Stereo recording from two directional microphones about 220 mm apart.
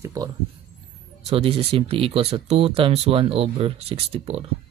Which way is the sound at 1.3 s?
25° right (ahead or behind).